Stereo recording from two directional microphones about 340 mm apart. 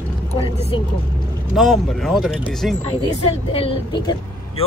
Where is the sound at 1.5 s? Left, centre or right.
Centre.